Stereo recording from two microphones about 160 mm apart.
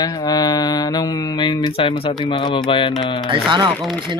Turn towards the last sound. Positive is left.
turn(degrees=5)  # may be behind; listen again after turning